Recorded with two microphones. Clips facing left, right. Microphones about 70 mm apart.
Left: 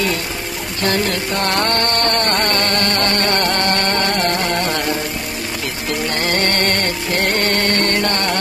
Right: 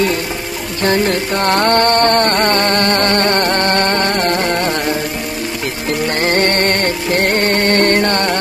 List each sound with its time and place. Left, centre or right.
0.8 s music: right
5.9 s music: right